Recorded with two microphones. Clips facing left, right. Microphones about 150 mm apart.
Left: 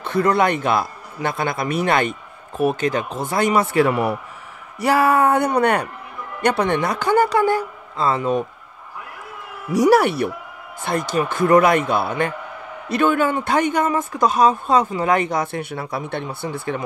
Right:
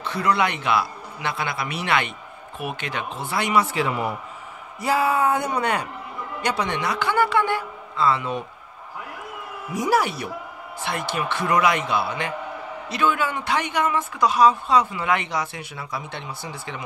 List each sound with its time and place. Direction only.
0.0 s a man's voice: 50° left (ahead or behind)
9.7 s a man's voice: 70° left (ahead or behind)
10.8 s a man's voice: 45° left (ahead or behind)